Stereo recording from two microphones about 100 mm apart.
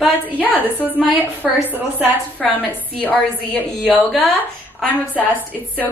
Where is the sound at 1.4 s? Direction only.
5° right (ahead or behind).